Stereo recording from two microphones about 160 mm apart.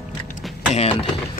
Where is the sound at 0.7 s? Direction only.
40° left (ahead or behind).